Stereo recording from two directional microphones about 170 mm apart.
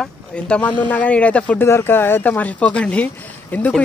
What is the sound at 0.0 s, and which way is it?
Speech, 5° left (ahead or behind).